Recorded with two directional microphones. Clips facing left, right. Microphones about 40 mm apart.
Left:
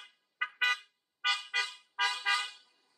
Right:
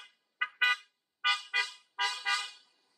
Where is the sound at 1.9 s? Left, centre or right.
Centre.